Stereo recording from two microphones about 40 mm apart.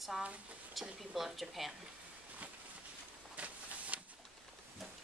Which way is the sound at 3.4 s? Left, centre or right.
Right.